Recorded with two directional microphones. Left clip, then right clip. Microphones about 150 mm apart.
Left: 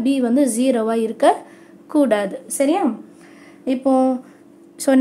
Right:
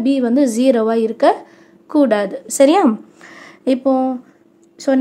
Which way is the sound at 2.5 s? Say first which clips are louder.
Right 7 dB; 35° right (ahead or behind).